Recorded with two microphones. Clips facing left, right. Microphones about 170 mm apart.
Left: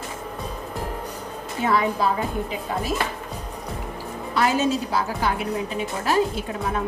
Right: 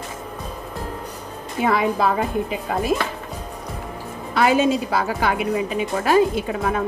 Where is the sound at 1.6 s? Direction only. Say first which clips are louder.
Right 2 dB; 65° right (ahead or behind).